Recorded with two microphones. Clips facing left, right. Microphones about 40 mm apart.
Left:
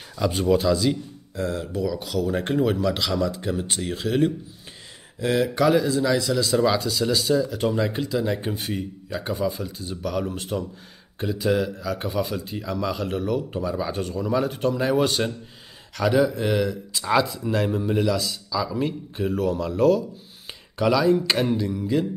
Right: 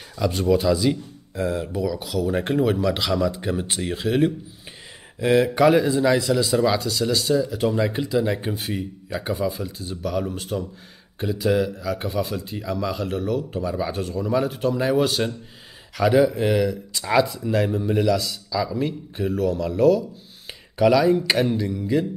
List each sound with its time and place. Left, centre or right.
0.1 s speech: centre
0.7 s speech: centre
6.5 s speech: centre